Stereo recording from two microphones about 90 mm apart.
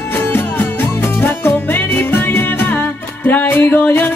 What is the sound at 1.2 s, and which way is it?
Music, 25° left (ahead or behind).